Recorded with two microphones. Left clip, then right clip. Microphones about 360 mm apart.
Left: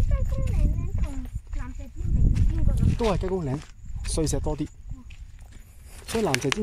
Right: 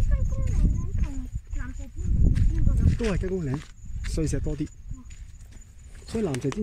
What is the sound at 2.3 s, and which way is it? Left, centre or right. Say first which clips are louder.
Speech: left 1 dB; centre.